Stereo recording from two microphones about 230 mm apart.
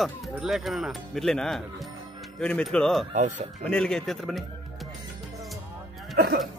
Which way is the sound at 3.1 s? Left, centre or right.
Right.